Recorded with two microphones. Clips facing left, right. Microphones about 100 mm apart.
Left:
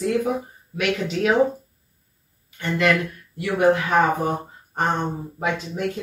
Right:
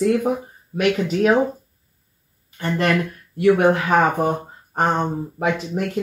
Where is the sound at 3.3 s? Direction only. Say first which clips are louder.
Right 9 dB; 60° right (ahead or behind).